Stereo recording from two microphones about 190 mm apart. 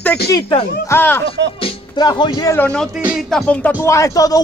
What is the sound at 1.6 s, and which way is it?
Speech, 25° left (ahead or behind).